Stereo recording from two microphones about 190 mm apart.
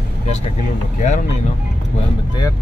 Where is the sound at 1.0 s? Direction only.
40° left (ahead or behind).